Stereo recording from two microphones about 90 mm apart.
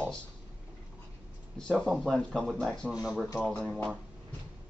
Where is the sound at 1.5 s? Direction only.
10° left (ahead or behind).